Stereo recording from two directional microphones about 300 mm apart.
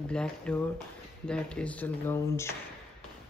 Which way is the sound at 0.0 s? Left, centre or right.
Centre.